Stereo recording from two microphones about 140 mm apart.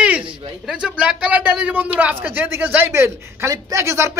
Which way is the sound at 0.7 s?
5° right (ahead or behind).